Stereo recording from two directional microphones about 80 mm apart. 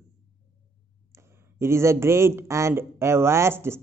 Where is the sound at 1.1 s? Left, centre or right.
Right.